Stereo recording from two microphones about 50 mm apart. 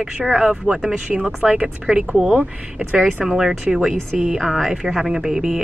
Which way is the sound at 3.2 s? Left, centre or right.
Centre.